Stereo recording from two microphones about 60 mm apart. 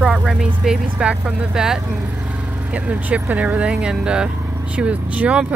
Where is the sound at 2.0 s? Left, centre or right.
Right.